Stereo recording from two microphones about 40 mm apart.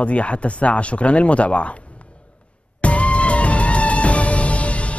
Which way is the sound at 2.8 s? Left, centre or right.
Left.